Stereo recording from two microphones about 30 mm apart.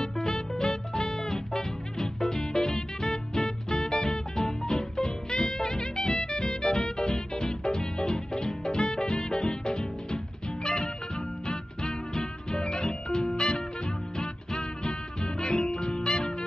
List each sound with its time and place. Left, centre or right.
0.0 s music: left